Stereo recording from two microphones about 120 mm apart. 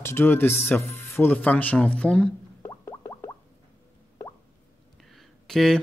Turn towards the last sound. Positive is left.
turn(degrees=0)  # may be behind; listen again after turning